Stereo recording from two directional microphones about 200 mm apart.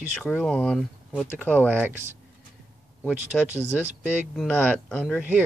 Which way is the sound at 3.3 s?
Centre (ahead or behind).